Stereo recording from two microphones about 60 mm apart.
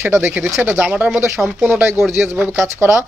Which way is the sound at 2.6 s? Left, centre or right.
Right.